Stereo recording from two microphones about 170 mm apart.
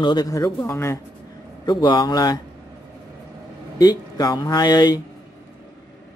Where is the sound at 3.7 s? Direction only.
20° left (ahead or behind).